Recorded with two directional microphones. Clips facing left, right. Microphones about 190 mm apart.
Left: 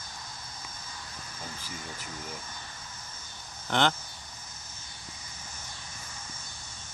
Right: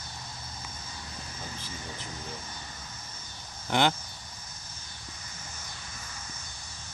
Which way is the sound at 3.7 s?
10° right (ahead or behind).